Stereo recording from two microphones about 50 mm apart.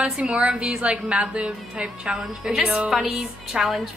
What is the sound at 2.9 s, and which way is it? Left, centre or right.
A woman's voice, centre.